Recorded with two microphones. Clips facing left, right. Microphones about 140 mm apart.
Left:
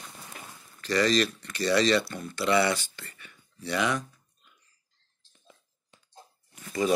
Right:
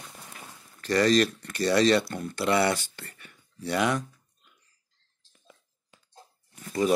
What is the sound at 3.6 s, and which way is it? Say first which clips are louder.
Speech: right 2 dB; 50° right (ahead or behind).